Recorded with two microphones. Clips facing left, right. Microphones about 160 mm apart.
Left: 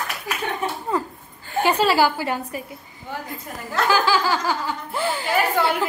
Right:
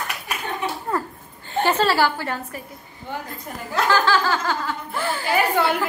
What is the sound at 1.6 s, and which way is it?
Speech, 10° left (ahead or behind).